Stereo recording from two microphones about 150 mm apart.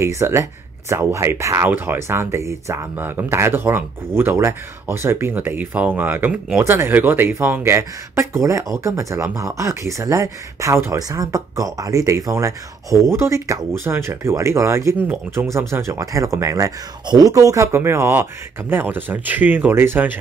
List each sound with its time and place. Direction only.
0.0 s speech: 20° right (ahead or behind)